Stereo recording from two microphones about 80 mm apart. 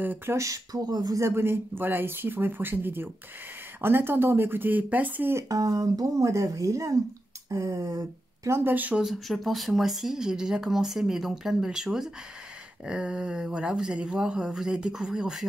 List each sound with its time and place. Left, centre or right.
0.0 s speech: right
0.4 s speech: right
1.2 s speech: right
5.3 s speech: right
8.5 s speech: right
8.7 s speech: right
9.0 s speech: centre